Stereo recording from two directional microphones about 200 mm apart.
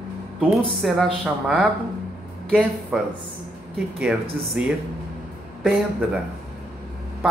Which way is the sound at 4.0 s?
5° right (ahead or behind).